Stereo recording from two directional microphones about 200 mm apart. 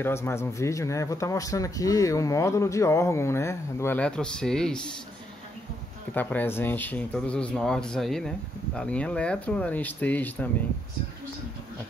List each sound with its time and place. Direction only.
0.0 s speech: 10° left (ahead or behind)
6.1 s speech: 10° left (ahead or behind)